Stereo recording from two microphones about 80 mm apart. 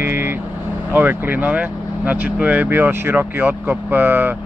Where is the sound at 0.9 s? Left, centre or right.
Right.